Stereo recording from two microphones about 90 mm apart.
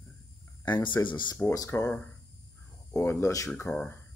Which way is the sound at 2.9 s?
30° left (ahead or behind).